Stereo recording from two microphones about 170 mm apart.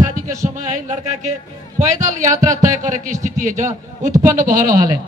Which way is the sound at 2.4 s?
20° right (ahead or behind).